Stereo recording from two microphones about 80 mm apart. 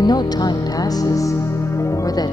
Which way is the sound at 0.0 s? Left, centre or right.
Left.